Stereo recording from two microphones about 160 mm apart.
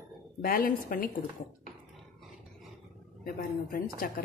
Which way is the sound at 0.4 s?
65° left (ahead or behind).